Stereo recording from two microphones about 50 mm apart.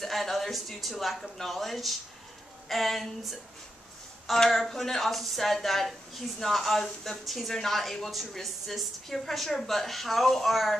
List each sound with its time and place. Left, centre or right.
0.0 s speech: centre
4.5 s speech: centre